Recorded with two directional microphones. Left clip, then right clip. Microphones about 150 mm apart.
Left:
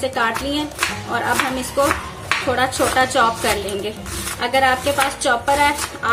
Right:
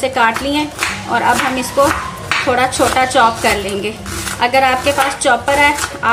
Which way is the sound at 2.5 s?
5° right (ahead or behind).